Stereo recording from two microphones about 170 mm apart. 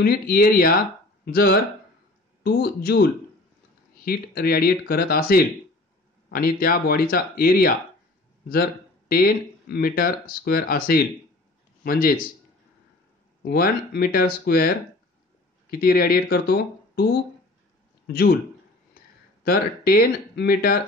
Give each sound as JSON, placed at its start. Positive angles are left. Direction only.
{"t": 0.0, "sound": "speech", "side_deg": 60}
{"t": 9.1, "sound": "speech", "side_deg": 60}
{"t": 13.4, "sound": "speech", "side_deg": 65}
{"t": 15.7, "sound": "speech", "side_deg": 60}
{"t": 19.0, "sound": "a sound", "side_deg": 60}
{"t": 19.4, "sound": "speech", "side_deg": 60}